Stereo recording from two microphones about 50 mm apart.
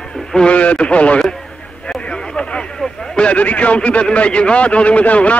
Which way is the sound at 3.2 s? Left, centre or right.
Left.